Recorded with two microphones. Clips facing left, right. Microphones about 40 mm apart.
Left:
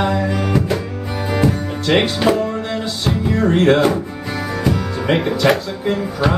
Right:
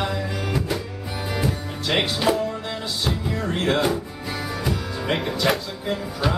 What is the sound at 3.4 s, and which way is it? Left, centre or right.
Music, left.